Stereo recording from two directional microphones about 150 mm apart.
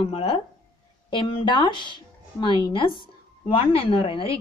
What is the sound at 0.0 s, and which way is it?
A woman's voice, 40° left (ahead or behind).